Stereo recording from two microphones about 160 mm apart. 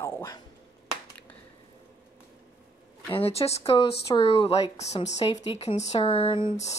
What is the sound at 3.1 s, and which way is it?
Speech, 40° left (ahead or behind).